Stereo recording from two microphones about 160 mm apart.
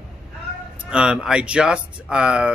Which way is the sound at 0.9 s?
5° right (ahead or behind).